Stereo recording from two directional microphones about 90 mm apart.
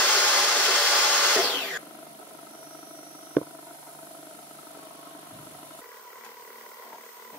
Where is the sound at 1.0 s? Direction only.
15° left (ahead or behind).